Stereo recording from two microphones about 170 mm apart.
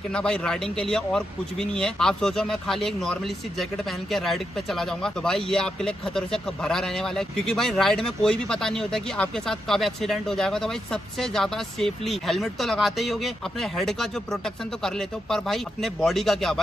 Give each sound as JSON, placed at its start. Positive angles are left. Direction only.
{"t": 0.1, "sound": "speech", "side_deg": 5}